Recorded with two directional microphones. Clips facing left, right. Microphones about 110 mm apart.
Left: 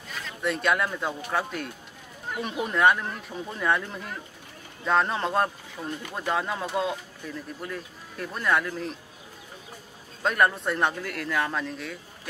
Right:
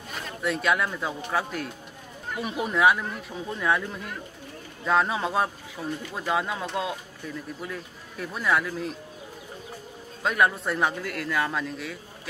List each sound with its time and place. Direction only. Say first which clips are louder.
0.4 s a man's voice: even; centre (ahead or behind)
10.2 s a man's voice: even; centre (ahead or behind)